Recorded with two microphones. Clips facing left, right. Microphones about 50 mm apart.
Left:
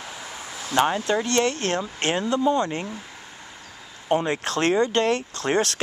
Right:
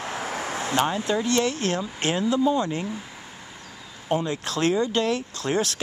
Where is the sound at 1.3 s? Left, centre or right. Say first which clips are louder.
Left 1 dB; left.